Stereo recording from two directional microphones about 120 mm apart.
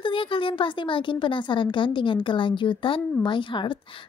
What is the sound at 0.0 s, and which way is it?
A woman's voice, 45° left (ahead or behind).